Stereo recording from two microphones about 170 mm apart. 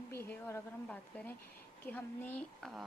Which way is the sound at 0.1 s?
15° left (ahead or behind).